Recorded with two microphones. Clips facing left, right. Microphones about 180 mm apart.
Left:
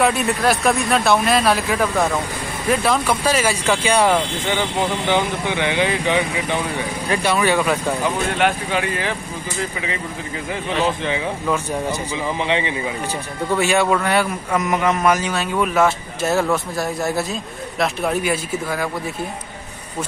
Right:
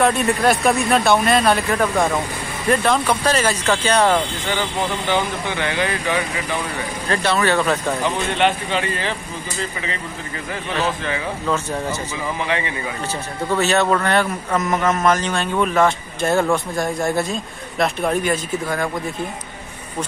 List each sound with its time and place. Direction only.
0.0 s speech: centre (ahead or behind)
10.7 s speech: 15° left (ahead or behind)
13.6 s speech: 10° left (ahead or behind)